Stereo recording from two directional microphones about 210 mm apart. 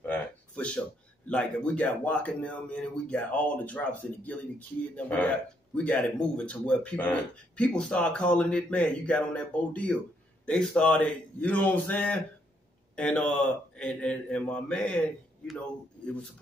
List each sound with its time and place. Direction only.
0.0 s speech: 5° left (ahead or behind)